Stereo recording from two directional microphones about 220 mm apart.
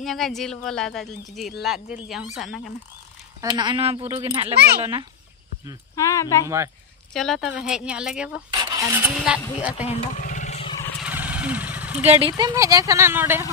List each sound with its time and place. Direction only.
0.0 s speech: centre (ahead or behind)
3.3 s speech: 20° right (ahead or behind)
5.9 s speech: 15° left (ahead or behind)
6.4 s speech: 10° right (ahead or behind)
7.2 s speech: centre (ahead or behind)
8.5 s speech: 20° right (ahead or behind)
9.8 s a sound: 35° left (ahead or behind)
11.0 s vehicle: 5° right (ahead or behind)
12.0 s speech: 25° right (ahead or behind); by 13.5 s 10° right (ahead or behind)